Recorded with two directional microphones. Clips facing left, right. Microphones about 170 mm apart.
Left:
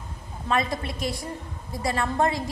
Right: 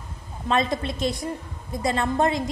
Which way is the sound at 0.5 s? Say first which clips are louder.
Right 3 dB; 25° right (ahead or behind).